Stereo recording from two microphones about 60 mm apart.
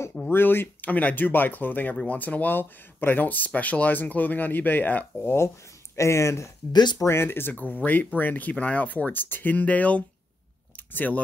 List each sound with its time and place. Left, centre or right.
0.3 s speech: left
5.2 s speech: left
5.9 s speech: left